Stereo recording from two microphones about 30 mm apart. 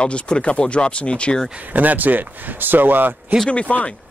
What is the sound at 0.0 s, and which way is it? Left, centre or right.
Speech, left.